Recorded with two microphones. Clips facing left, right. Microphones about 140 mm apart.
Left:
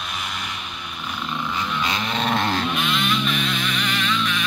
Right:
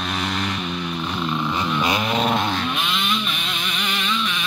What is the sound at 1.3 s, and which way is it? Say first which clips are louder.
Music: right 1 dB; 20° right (ahead or behind).